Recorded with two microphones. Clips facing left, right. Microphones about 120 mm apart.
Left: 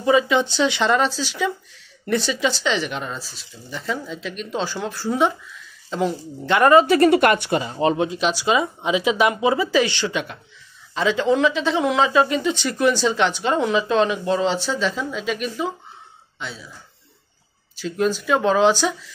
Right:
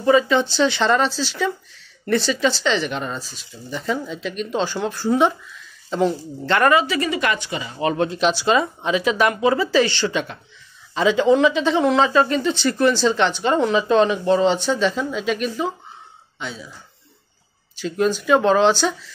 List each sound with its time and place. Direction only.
0.0 s speech: 10° left (ahead or behind)
6.9 s speech: 50° left (ahead or behind)
7.7 s speech: 25° left (ahead or behind)
8.0 s speech: 5° left (ahead or behind)
17.7 s speech: centre (ahead or behind)